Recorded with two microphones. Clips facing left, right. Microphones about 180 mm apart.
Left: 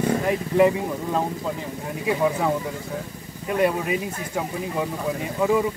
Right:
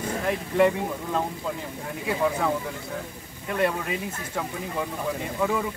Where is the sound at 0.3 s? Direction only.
5° left (ahead or behind).